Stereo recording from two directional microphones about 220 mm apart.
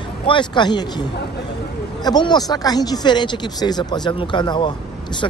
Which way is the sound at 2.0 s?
20° left (ahead or behind).